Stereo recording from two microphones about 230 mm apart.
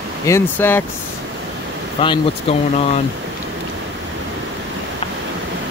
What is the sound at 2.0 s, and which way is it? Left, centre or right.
Speech, left.